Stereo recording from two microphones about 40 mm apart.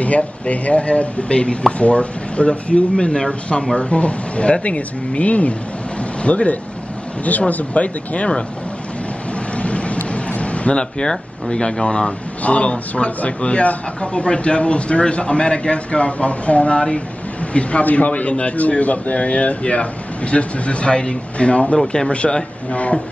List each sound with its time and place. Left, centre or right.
0.0 s speech: left
9.6 s a sound: left
12.4 s speech: left
21.7 s speech: centre
22.1 s speech: left